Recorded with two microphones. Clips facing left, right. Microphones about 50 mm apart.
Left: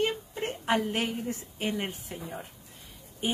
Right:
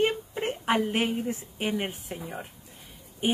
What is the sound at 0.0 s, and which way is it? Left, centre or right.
A woman's voice, right.